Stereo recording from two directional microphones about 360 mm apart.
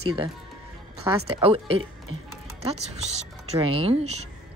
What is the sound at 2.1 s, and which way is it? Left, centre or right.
Speech, right.